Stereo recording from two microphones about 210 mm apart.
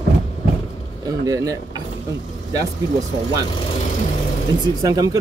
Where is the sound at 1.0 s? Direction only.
15° right (ahead or behind).